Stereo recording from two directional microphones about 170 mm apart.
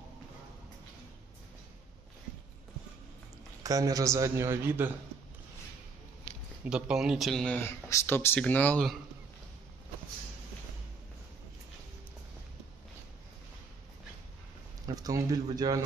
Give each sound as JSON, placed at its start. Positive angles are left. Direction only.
{"t": 3.6, "sound": "a man's voice", "side_deg": -20}
{"t": 6.6, "sound": "speech", "side_deg": -5}
{"t": 14.9, "sound": "a man's voice", "side_deg": -20}